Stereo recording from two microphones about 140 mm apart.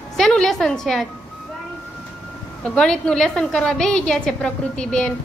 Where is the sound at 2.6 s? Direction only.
5° left (ahead or behind).